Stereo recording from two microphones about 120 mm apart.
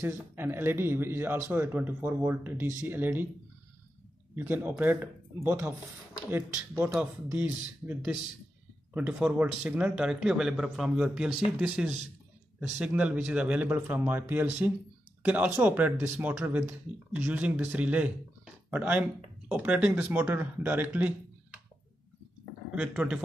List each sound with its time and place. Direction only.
0.0 s a man's voice: 20° right (ahead or behind)
4.4 s speech: 15° right (ahead or behind)
6.8 s speech: 15° right (ahead or behind)
22.8 s speech: 10° right (ahead or behind)